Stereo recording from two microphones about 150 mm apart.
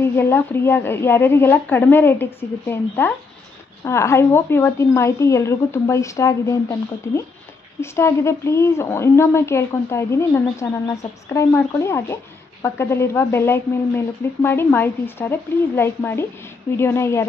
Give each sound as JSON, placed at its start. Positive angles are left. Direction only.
{"t": 0.0, "sound": "a woman's voice", "side_deg": 15}